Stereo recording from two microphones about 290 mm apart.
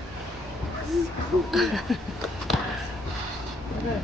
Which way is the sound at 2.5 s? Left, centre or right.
Centre.